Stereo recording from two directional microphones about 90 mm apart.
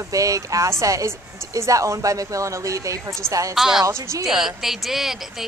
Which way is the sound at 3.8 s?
35° right (ahead or behind).